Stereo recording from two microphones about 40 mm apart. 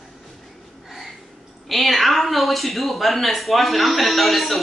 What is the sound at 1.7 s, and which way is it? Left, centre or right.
Speech, centre.